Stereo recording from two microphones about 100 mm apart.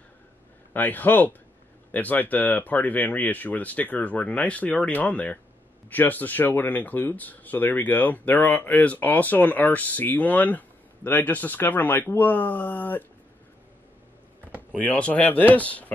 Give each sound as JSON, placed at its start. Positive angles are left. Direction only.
{"t": 0.7, "sound": "speech", "side_deg": 15}
{"t": 14.8, "sound": "speech", "side_deg": 15}